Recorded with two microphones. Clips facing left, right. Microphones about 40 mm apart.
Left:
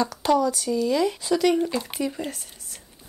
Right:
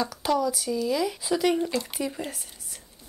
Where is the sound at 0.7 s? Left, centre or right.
Centre.